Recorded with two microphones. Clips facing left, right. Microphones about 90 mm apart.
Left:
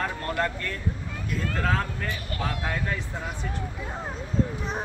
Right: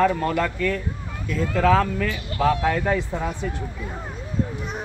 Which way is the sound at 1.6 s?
90° right.